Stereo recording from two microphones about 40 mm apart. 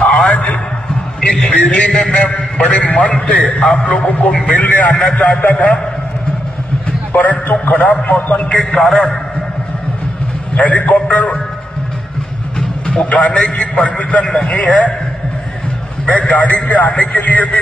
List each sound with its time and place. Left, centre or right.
0.0 s a sound: left
2.0 s a man's voice: left
7.1 s a man's voice: left
7.9 s a man's voice: left
8.5 s a man's voice: centre
10.5 s a man's voice: left
12.5 s a sound: left
13.3 s a man's voice: left
16.1 s a man's voice: left